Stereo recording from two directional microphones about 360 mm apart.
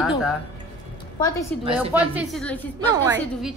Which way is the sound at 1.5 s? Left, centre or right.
Centre.